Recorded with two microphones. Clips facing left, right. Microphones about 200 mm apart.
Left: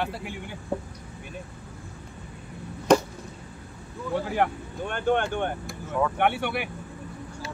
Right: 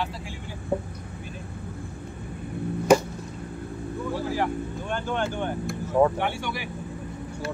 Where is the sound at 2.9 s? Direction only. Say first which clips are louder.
Right 1 dB; 10° right (ahead or behind).